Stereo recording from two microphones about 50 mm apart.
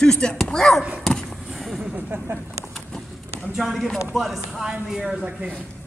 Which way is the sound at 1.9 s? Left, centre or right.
Right.